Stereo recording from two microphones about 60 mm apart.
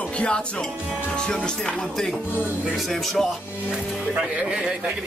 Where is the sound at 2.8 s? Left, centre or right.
Centre.